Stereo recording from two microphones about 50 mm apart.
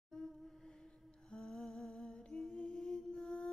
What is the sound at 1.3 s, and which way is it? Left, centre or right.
Humming, centre.